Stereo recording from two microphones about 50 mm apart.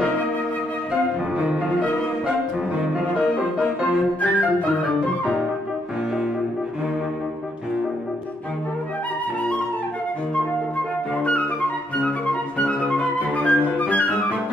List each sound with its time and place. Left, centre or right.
12.0 s music: left
13.4 s flute: left